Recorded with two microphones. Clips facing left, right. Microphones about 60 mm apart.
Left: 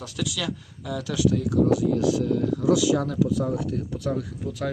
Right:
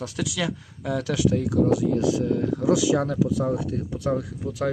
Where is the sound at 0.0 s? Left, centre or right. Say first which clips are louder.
Right 2 dB; right.